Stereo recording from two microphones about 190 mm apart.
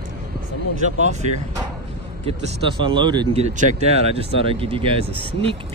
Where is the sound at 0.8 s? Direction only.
40° right (ahead or behind).